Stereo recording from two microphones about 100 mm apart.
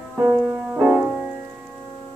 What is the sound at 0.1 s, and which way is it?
Music, 15° right (ahead or behind).